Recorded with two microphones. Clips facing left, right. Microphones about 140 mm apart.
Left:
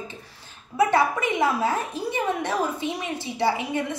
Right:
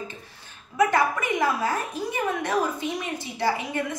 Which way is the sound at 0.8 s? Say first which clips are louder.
Left 1 dB; 20° left (ahead or behind).